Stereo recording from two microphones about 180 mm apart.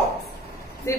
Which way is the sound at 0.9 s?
15° left (ahead or behind).